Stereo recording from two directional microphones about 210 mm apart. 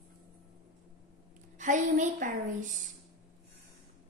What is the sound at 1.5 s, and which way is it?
A woman's voice, 35° right (ahead or behind).